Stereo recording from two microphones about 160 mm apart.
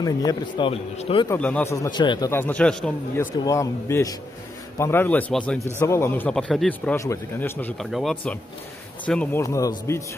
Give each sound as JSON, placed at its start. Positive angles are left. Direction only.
{"t": 0.0, "sound": "a man's voice", "side_deg": 25}
{"t": 0.7, "sound": "speech", "side_deg": 35}
{"t": 1.4, "sound": "speech", "side_deg": 10}
{"t": 3.2, "sound": "a man's voice", "side_deg": 20}
{"t": 5.8, "sound": "speech", "side_deg": 15}
{"t": 6.3, "sound": "speech", "side_deg": 0}
{"t": 7.8, "sound": "speech", "side_deg": 0}
{"t": 9.4, "sound": "a man's voice", "side_deg": 20}